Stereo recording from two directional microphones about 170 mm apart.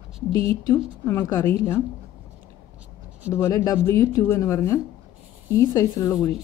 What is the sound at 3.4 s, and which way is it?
A woman's voice, 20° left (ahead or behind).